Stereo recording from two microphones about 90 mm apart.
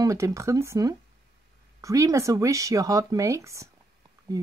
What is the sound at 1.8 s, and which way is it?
Speech, 35° right (ahead or behind).